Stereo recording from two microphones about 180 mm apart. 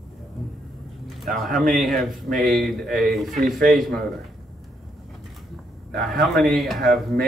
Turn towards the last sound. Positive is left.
turn(degrees=0)  # may be behind; listen again after turning